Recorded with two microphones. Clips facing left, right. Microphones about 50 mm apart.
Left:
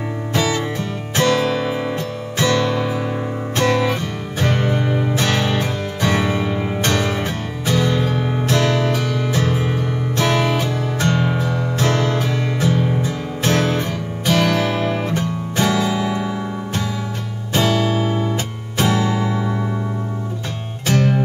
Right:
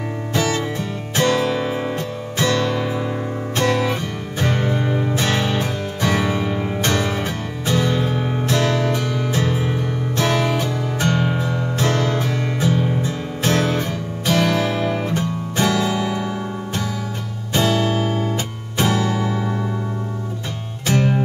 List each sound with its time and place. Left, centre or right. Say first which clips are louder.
0.3 s music: left 1 dB; left
4.8 s music: left 1 dB; centre
5.1 s music: left 1 dB; left
6.4 s music: left 1 dB; centre
6.8 s music: left 1 dB; left
11.0 s music: left 1 dB; right
11.8 s music: left 1 dB; left
14.3 s guitar: left 1 dB; left
17.6 s music: left 1 dB; left
20.9 s music: left 1 dB; right